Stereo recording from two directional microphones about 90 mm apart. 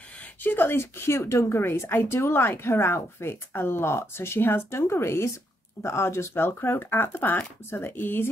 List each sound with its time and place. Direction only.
0.2 s a woman's voice: 20° left (ahead or behind)